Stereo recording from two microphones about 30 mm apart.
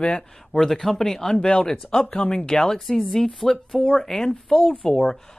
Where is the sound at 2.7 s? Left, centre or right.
Centre.